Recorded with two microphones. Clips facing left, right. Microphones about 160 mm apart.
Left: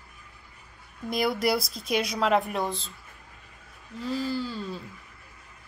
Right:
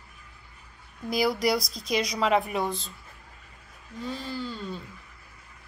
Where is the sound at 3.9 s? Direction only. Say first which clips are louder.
Left 4 dB; centre (ahead or behind).